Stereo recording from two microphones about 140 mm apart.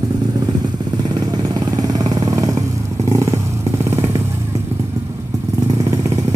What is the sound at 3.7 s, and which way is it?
Motorcycle, 20° right (ahead or behind).